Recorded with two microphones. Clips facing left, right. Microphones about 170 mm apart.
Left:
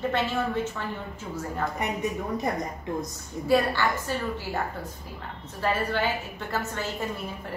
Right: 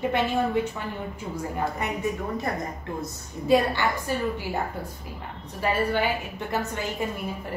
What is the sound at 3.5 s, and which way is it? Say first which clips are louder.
A woman's voice: right 2 dB; 20° right (ahead or behind).